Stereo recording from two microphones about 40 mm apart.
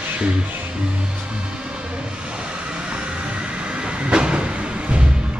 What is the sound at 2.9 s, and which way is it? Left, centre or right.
Train, right.